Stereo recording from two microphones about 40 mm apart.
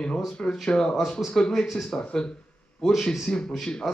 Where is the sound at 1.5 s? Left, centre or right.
Centre.